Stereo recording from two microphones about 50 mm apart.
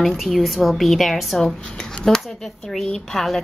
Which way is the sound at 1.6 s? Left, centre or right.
Centre.